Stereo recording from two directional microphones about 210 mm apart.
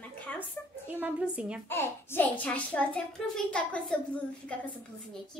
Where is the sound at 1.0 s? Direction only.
5° right (ahead or behind).